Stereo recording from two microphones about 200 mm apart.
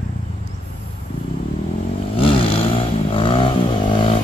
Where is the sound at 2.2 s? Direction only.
25° left (ahead or behind).